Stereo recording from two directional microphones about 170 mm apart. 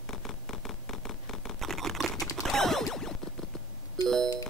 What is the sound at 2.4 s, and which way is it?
Zipper, centre (ahead or behind).